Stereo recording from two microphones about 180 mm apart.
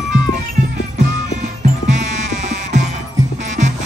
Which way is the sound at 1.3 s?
40° right (ahead or behind).